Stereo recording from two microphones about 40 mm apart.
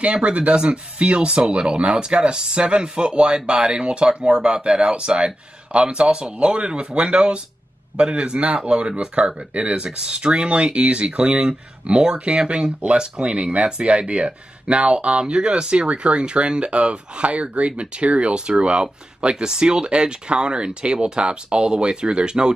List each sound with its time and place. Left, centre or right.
0.0 s speech: right
9.9 s speech: right
19.3 s speech: centre